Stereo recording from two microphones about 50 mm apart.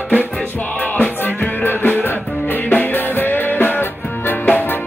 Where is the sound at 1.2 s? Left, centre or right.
Left.